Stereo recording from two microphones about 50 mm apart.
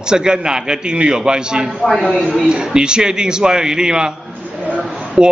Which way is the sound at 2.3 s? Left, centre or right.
Centre.